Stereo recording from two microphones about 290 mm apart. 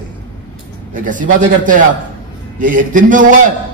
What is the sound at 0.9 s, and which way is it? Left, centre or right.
A man's voice, right.